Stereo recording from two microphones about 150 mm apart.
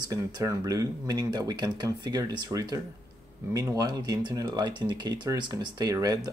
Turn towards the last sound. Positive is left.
turn(degrees=-25)  # may be behind; listen again after turning